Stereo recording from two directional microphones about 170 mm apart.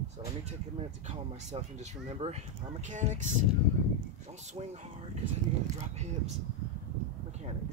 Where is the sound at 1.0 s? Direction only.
40° right (ahead or behind).